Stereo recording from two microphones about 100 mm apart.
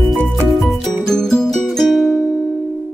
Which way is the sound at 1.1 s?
5° left (ahead or behind).